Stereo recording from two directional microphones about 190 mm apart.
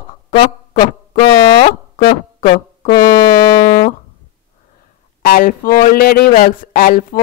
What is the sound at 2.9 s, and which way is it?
Music, 20° left (ahead or behind).